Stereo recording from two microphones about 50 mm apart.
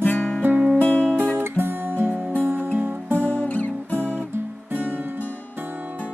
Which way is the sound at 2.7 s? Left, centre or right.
Right.